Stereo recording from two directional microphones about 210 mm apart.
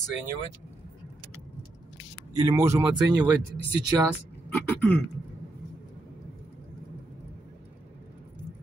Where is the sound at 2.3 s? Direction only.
15° right (ahead or behind).